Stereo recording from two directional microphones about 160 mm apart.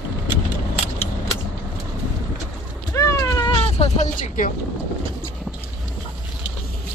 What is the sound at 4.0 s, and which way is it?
Vehicle, 55° left (ahead or behind).